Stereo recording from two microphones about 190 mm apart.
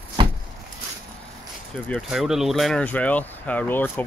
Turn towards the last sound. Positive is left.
turn(degrees=10)  # may be behind; listen again after turning